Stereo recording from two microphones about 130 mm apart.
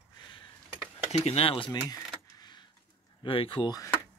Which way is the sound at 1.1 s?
50° left (ahead or behind).